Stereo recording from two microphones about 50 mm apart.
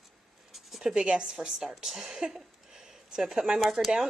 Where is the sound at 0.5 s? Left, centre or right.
Centre.